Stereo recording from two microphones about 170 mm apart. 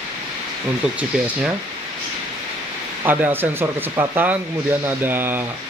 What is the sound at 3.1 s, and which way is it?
Speech, 10° right (ahead or behind).